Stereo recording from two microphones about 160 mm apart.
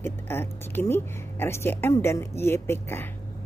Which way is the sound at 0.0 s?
15° left (ahead or behind).